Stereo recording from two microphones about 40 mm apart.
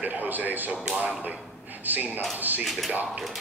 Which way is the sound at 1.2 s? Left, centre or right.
Right.